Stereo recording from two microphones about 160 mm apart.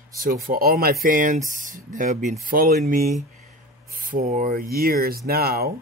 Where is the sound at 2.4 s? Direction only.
65° right (ahead or behind).